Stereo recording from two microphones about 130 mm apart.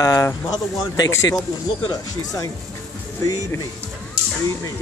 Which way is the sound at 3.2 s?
25° left (ahead or behind).